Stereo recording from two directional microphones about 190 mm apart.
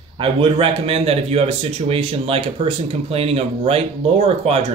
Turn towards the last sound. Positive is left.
turn(degrees=-35)  # may be behind; listen again after turning